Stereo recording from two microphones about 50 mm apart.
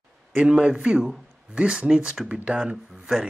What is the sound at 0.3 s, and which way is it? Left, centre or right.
Speech, right.